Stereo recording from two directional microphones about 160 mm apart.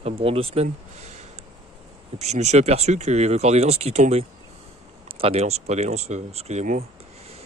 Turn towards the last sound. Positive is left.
turn(degrees=-50)  # may be behind; listen again after turning